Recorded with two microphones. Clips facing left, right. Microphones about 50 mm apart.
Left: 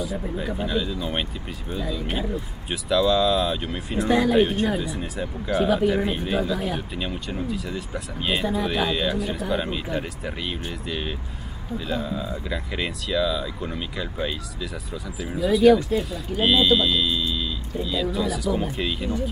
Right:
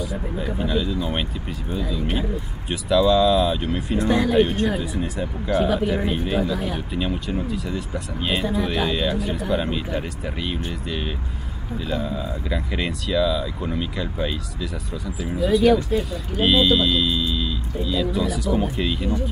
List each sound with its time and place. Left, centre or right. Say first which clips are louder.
0.4 s speech: right 3 dB; centre